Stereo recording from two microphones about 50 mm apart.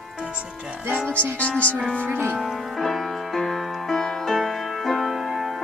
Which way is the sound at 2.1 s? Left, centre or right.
Right.